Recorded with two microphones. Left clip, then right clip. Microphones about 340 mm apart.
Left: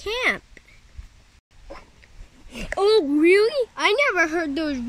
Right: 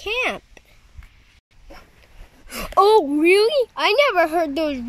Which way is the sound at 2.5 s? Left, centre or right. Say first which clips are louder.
Right 5 dB; centre.